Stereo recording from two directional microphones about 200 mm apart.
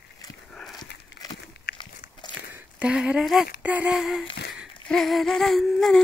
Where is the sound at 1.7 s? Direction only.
50° left (ahead or behind).